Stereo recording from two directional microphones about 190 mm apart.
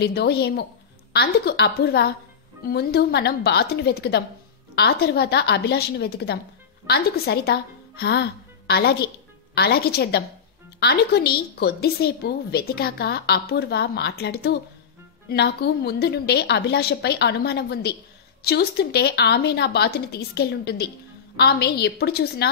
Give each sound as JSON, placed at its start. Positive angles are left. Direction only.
{"t": 0.0, "sound": "a woman's voice", "side_deg": 60}